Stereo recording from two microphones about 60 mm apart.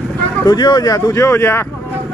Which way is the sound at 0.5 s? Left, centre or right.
Left.